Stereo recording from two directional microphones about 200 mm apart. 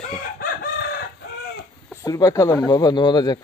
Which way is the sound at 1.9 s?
15° left (ahead or behind).